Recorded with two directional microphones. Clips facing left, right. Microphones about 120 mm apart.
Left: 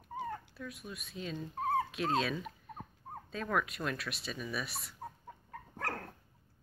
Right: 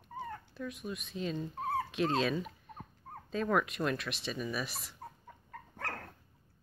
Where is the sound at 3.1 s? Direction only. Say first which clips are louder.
Left 2 dB; 20° left (ahead or behind).